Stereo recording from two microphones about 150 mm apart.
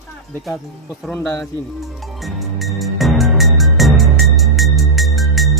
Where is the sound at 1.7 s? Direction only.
Centre (ahead or behind).